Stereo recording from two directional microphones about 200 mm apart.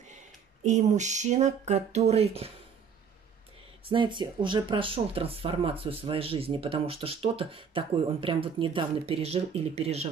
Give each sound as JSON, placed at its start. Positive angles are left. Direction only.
{"t": 0.7, "sound": "speech", "side_deg": -35}
{"t": 3.9, "sound": "speech", "side_deg": -25}